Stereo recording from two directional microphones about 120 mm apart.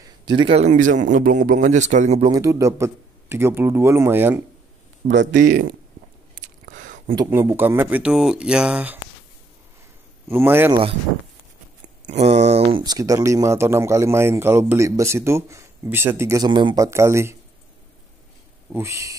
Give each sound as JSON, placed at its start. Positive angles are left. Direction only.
{"t": 0.0, "sound": "a sound", "side_deg": -40}
{"t": 0.6, "sound": "speech", "side_deg": -85}
{"t": 2.2, "sound": "a man's voice", "side_deg": -30}
{"t": 7.2, "sound": "speech", "side_deg": -20}
{"t": 10.2, "sound": "a man's voice", "side_deg": -20}
{"t": 10.7, "sound": "speech", "side_deg": -45}
{"t": 12.1, "sound": "speech", "side_deg": -65}
{"t": 12.8, "sound": "a man's voice", "side_deg": -30}
{"t": 16.4, "sound": "speech", "side_deg": -40}
{"t": 16.8, "sound": "a man's voice", "side_deg": -25}
{"t": 18.7, "sound": "a man's voice", "side_deg": -25}